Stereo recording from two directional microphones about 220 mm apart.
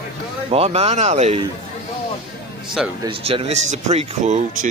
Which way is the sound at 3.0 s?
25° right (ahead or behind).